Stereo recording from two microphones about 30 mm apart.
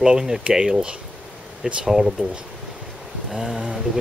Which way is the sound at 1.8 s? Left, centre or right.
Centre.